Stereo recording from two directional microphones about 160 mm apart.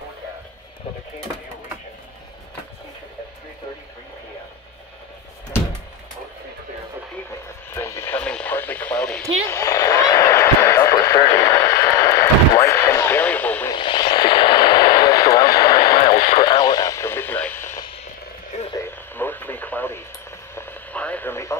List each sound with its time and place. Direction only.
7.7 s radio: 15° left (ahead or behind)
9.5 s a sound: 20° left (ahead or behind)
13.7 s radio: 30° left (ahead or behind)